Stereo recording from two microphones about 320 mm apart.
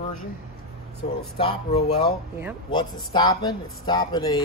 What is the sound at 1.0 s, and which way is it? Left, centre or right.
A man's voice, left.